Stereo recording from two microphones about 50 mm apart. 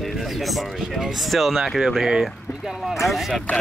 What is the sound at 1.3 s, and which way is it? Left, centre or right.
Speech, centre.